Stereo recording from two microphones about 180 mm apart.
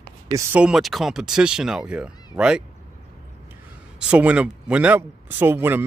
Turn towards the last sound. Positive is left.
turn(degrees=-10)  # may be behind; listen again after turning